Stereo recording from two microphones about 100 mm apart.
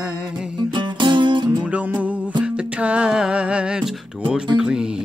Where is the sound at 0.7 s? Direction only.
50° right (ahead or behind).